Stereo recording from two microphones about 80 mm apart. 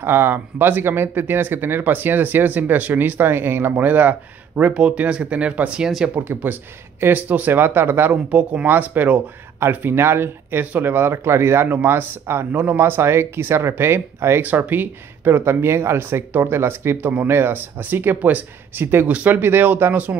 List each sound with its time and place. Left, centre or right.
0.0 s speech: right
5.9 s speech: centre
6.1 s speech: right
8.1 s speech: centre